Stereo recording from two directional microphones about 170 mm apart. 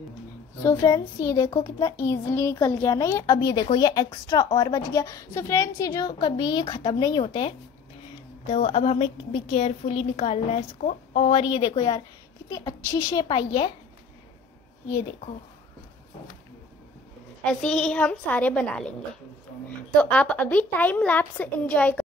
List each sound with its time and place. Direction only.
0.6 s a child's voice: 15° left (ahead or behind)
8.5 s a woman's voice: 40° left (ahead or behind)
11.3 s a woman's voice: 25° left (ahead or behind)
17.4 s a child's voice: 5° left (ahead or behind)
20.0 s a child's voice: 5° left (ahead or behind)